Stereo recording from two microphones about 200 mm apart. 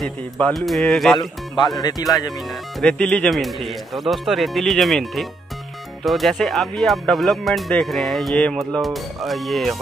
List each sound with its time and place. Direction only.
0.0 s speech: centre (ahead or behind)
1.8 s speech: 20° left (ahead or behind)
2.8 s speech: 5° left (ahead or behind)